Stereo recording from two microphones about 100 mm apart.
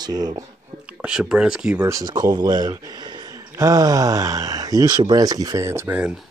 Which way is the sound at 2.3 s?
45° right (ahead or behind).